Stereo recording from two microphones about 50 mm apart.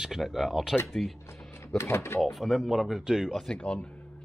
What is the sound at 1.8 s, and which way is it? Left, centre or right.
Speech, left.